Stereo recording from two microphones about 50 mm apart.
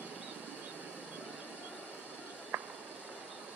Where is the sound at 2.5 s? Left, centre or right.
Right.